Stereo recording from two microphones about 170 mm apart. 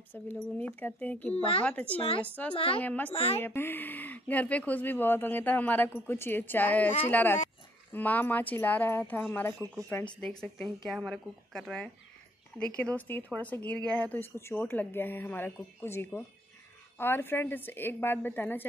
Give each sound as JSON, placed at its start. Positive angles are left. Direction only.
{"t": 0.1, "sound": "speech", "side_deg": 10}
{"t": 1.3, "sound": "speech", "side_deg": 35}
{"t": 1.6, "sound": "speech", "side_deg": 10}
{"t": 2.0, "sound": "speech", "side_deg": 35}
{"t": 2.8, "sound": "speech", "side_deg": 10}
{"t": 3.1, "sound": "speech", "side_deg": 35}
{"t": 3.4, "sound": "speech", "side_deg": 15}